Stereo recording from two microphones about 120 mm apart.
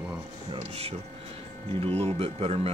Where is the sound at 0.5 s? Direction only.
60° right (ahead or behind).